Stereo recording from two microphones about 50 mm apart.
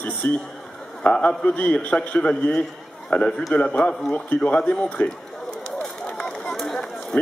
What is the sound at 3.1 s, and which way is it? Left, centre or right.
A man's voice, centre.